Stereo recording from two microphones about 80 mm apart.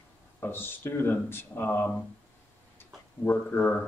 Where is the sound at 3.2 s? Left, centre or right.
Left.